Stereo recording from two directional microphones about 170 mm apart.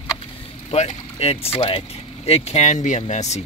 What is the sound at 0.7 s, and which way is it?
Speech, 35° left (ahead or behind).